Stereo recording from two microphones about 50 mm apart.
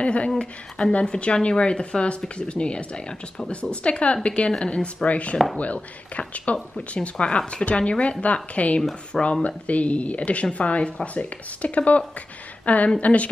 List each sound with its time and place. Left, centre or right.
0.0 s a woman's voice: left